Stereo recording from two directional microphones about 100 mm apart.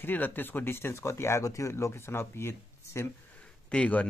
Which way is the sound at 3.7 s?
15° left (ahead or behind).